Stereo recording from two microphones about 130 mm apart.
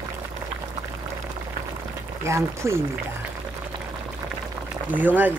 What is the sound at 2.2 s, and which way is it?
Speech, 20° right (ahead or behind).